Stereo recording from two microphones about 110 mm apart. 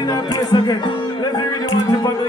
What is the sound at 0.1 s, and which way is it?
Music, 40° left (ahead or behind).